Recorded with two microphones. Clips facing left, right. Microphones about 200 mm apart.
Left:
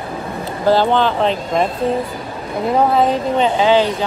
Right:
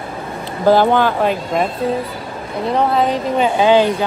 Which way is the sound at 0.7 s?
15° right (ahead or behind).